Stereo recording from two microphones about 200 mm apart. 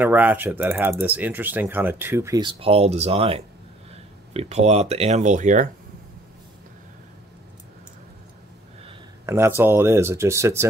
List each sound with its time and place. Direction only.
0.0 s speech: 10° right (ahead or behind); by 5.7 s 40° right (ahead or behind)
9.2 s speech: 15° right (ahead or behind)